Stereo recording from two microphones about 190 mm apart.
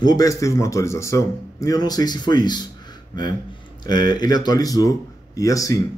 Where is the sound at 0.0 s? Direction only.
20° left (ahead or behind).